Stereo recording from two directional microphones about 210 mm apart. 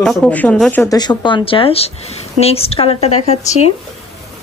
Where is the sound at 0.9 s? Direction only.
20° left (ahead or behind).